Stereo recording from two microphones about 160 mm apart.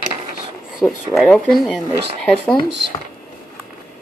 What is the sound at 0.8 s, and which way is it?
Speech, 5° left (ahead or behind).